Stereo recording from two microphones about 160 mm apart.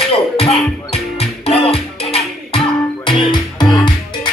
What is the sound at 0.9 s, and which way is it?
Music, 40° left (ahead or behind).